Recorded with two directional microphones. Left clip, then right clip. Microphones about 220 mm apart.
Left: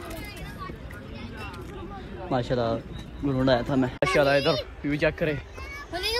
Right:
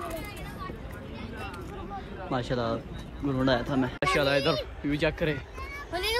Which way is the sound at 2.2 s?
10° right (ahead or behind).